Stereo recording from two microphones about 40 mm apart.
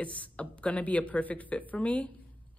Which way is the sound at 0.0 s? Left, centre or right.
Left.